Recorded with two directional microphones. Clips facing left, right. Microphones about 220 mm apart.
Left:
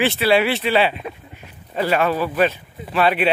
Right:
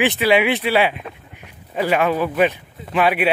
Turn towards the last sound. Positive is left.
turn(degrees=-10)  # may be behind; listen again after turning